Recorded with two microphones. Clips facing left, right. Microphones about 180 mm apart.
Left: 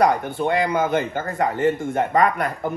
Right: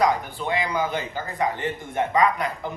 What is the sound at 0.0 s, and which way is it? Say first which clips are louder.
Speech: left 4 dB; 60° left (ahead or behind).